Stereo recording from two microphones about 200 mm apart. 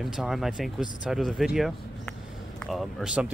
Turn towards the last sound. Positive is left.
turn(degrees=-5)  # may be behind; listen again after turning